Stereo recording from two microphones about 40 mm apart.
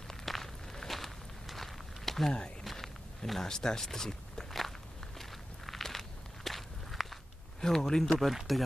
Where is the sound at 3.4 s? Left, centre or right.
Centre.